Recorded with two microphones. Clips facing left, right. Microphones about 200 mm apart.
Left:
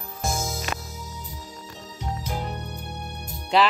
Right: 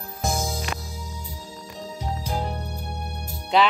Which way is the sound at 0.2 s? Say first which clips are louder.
Right 2 dB; 15° right (ahead or behind).